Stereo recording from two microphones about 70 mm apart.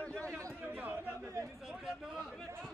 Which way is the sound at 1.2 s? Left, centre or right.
Right.